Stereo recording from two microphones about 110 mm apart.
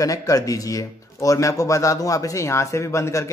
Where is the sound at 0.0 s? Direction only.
30° left (ahead or behind).